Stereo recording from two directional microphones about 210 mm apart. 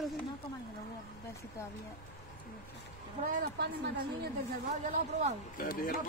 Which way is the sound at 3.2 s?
40° right (ahead or behind).